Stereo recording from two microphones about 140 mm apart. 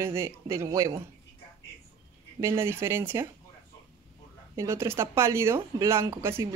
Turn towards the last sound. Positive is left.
turn(degrees=-20)  # may be behind; listen again after turning